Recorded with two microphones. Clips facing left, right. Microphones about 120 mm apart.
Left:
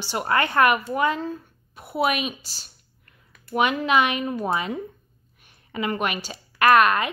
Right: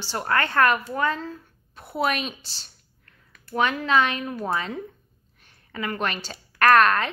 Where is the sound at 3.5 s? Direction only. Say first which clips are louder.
Left 1 dB; 15° left (ahead or behind).